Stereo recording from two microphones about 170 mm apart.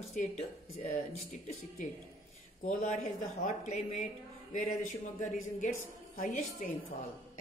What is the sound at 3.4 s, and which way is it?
Speech, 45° left (ahead or behind).